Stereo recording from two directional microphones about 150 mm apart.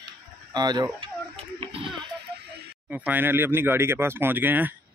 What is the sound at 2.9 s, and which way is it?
Speech, 10° right (ahead or behind).